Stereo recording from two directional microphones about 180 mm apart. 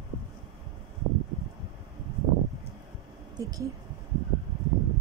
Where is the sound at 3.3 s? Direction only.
20° right (ahead or behind).